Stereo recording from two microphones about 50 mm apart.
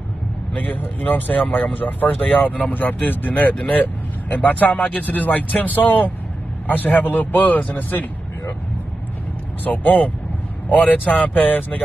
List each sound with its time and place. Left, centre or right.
0.6 s speech: left
9.7 s speech: left